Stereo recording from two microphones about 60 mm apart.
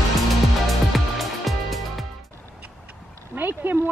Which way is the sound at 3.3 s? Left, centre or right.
Right.